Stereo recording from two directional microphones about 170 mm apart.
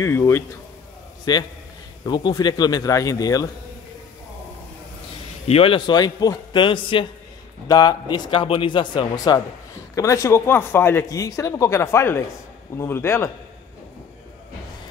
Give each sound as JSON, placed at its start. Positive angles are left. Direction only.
{"t": 0.0, "sound": "a man's voice", "side_deg": 15}
{"t": 5.5, "sound": "a man's voice", "side_deg": 35}